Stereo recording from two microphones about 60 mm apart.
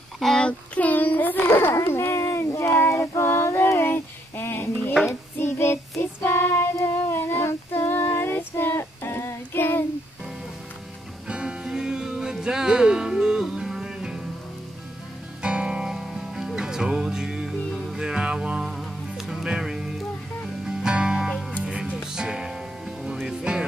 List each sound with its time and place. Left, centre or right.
0.2 s child singing: centre
0.5 s a sound: left
1.5 s a sound: left
5.4 s child singing: left
6.8 s a sound: left
8.0 s female singing: left
11.2 s music: centre
15.4 s music: centre
15.9 s music: centre
17.6 s music: centre
18.0 s music: centre
18.7 s music: centre